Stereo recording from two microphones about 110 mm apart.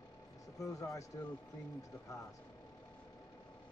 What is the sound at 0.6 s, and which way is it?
Speech, 30° left (ahead or behind).